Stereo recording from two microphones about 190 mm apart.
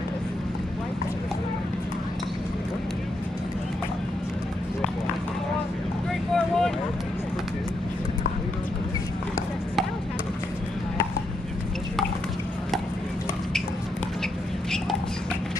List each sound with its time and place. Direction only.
6.3 s vehicle: 5° left (ahead or behind)